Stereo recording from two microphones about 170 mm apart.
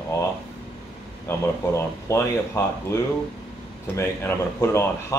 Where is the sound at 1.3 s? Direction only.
15° left (ahead or behind).